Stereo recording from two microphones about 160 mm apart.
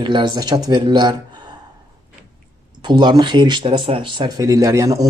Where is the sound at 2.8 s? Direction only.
30° right (ahead or behind).